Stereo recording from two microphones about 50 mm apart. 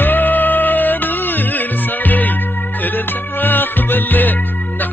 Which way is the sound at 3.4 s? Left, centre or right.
Left.